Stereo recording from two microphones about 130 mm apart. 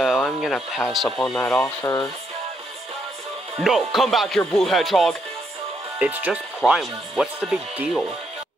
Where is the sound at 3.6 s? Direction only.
Centre (ahead or behind).